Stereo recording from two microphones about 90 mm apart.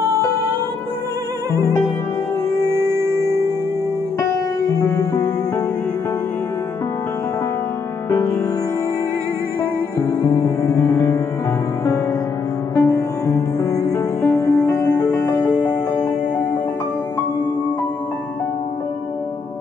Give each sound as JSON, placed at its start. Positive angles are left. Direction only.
{"t": 1.5, "sound": "music", "side_deg": 35}
{"t": 2.9, "sound": "music", "side_deg": -30}
{"t": 4.2, "sound": "music", "side_deg": 45}
{"t": 9.9, "sound": "music", "side_deg": 20}
{"t": 10.4, "sound": "music", "side_deg": 35}
{"t": 12.7, "sound": "music", "side_deg": 35}
{"t": 15.3, "sound": "music", "side_deg": 15}
{"t": 15.7, "sound": "music", "side_deg": 25}